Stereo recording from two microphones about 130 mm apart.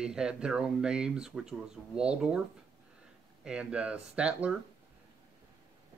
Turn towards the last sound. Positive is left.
turn(degrees=-10)  # may be behind; listen again after turning